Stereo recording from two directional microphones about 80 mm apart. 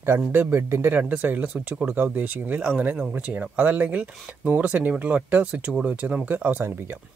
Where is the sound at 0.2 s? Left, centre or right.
Right.